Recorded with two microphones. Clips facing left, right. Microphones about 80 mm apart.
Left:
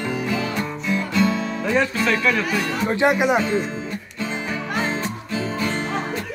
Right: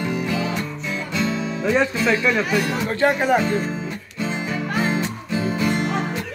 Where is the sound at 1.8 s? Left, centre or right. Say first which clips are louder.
Even; centre.